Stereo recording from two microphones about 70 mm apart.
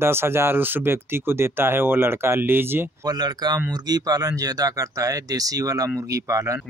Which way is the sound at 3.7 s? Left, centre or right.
Right.